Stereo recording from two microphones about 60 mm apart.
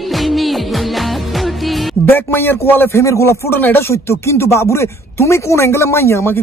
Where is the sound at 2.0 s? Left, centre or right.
Left.